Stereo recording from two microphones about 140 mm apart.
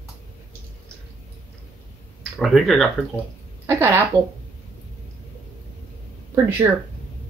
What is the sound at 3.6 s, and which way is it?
Speech, 20° right (ahead or behind).